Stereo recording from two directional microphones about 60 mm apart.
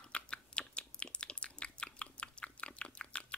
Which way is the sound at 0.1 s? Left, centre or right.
Centre.